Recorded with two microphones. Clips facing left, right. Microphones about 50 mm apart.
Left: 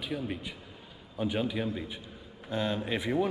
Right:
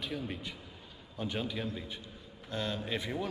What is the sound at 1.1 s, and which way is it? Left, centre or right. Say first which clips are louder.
A man's voice: left 5 dB; centre.